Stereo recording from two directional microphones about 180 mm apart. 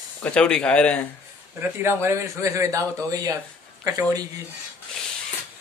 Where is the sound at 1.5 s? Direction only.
15° right (ahead or behind).